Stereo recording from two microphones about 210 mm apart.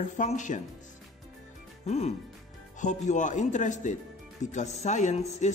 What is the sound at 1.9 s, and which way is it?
Speech, 30° left (ahead or behind).